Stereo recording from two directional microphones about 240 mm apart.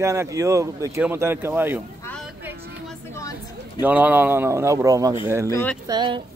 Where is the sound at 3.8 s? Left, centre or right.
Centre.